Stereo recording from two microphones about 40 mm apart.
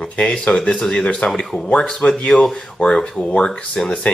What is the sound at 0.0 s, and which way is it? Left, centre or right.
Speech, left.